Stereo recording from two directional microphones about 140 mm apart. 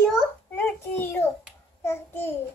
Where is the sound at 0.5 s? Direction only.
10° left (ahead or behind).